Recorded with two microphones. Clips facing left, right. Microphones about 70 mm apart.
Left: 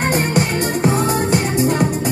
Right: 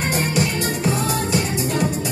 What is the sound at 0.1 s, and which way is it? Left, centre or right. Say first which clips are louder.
Music: left 4 dB; left.